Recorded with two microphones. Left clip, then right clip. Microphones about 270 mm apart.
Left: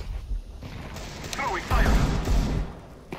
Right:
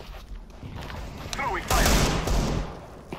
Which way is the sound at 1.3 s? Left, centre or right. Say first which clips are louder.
Right 1 dB; centre.